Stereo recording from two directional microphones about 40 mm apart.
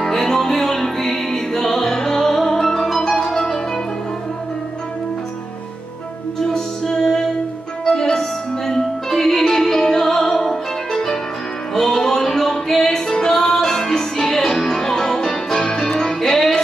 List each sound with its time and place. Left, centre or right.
0.0 s music: centre
6.4 s music: centre